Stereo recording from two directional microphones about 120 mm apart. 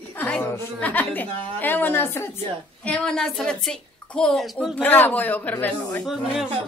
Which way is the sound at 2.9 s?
5° left (ahead or behind).